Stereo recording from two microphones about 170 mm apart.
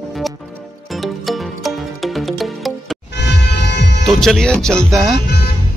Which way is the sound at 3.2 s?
85° left.